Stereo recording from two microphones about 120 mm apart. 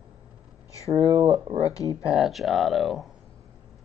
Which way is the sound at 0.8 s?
60° right (ahead or behind).